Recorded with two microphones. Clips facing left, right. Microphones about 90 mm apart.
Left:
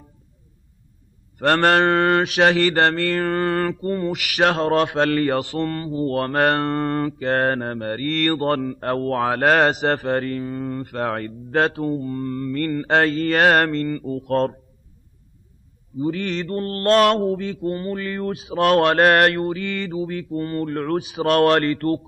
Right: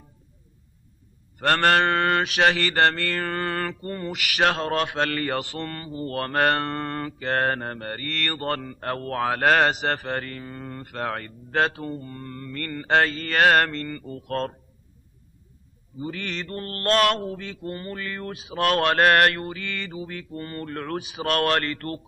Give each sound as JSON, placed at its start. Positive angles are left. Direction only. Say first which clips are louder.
{"t": 1.4, "sound": "mantra", "louder": "left 3 dB", "side_deg": 15}
{"t": 16.0, "sound": "mantra", "louder": "left 8 dB", "side_deg": 10}